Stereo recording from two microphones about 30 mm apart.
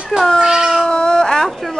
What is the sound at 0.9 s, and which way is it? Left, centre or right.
Baby cry, left.